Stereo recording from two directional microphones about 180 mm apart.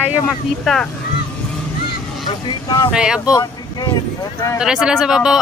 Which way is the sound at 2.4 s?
25° left (ahead or behind).